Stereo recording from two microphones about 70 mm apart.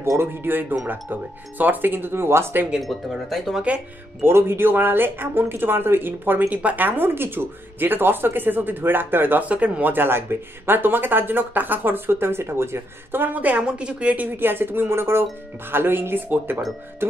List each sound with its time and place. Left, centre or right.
0.0 s speech: right
2.8 s speech: centre
4.2 s speech: right